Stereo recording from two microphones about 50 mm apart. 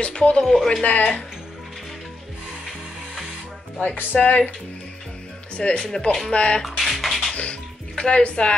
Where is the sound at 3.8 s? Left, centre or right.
Left.